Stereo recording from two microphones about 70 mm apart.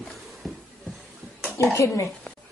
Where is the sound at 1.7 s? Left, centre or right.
Left.